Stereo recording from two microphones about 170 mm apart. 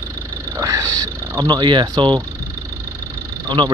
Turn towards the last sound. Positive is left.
turn(degrees=-30)  # may be behind; listen again after turning